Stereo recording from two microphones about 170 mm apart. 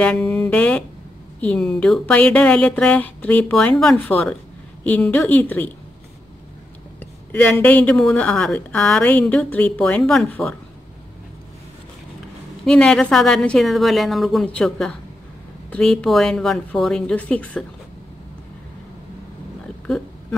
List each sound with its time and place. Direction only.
0.0 s a woman's voice: 5° left (ahead or behind)
7.0 s speech: 10° left (ahead or behind)
12.6 s a woman's voice: 5° left (ahead or behind)